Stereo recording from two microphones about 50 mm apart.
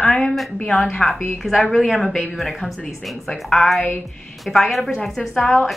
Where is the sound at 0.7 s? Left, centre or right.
Centre.